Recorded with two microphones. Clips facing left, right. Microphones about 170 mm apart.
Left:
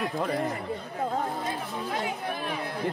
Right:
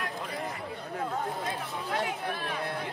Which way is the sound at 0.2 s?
50° left (ahead or behind).